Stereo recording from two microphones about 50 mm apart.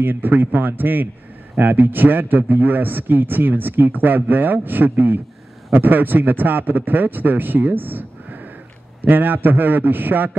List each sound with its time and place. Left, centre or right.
0.0 s a man's voice: right